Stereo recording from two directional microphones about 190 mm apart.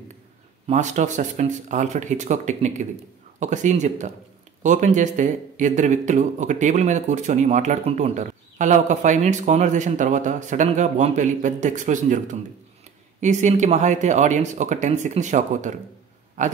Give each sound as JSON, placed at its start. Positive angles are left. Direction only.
{"t": 0.7, "sound": "speech", "side_deg": -40}